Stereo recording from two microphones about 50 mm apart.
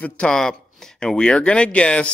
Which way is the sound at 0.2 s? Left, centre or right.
Centre.